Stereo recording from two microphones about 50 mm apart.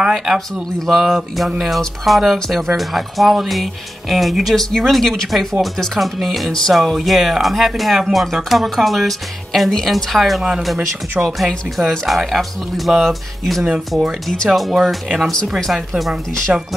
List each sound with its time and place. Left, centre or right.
0.8 s speech: centre
13.7 s speech: centre
14.5 s speech: centre
16.5 s speech: centre